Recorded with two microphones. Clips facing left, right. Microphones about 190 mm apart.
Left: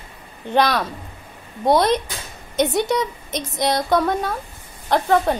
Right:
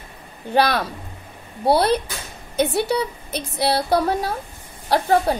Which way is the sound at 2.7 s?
35° right (ahead or behind).